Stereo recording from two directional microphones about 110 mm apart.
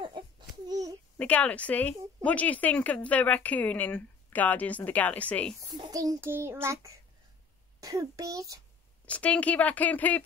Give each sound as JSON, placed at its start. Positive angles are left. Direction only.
{"t": 0.2, "sound": "babbling", "side_deg": -45}
{"t": 1.1, "sound": "speech", "side_deg": 15}
{"t": 5.8, "sound": "child singing", "side_deg": -35}
{"t": 6.2, "sound": "child singing", "side_deg": -20}
{"t": 7.8, "sound": "a child's voice", "side_deg": -30}
{"t": 9.0, "sound": "speech", "side_deg": 10}